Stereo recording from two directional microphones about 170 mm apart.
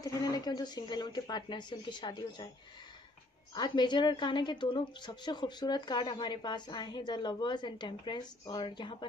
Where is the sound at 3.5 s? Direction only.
25° left (ahead or behind).